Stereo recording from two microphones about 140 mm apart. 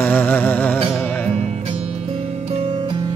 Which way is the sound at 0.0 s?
10° left (ahead or behind).